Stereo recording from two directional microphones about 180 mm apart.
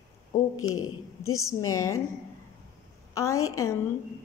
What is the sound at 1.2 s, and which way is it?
Speech, 15° left (ahead or behind).